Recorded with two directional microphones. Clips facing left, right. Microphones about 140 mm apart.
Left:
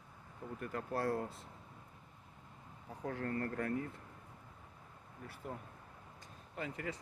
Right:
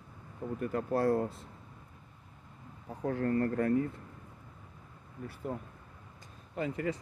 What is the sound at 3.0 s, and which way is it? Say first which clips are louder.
Speech: right 9 dB; 40° right (ahead or behind).